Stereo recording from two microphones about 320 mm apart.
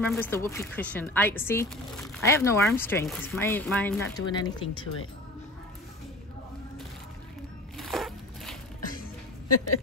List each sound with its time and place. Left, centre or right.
0.0 s speech: centre
4.3 s speech: centre
7.7 s a sound: centre
8.8 s music: left